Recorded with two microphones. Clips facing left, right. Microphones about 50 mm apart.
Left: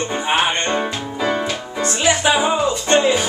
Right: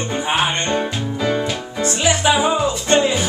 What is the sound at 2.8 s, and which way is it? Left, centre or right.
Music, centre.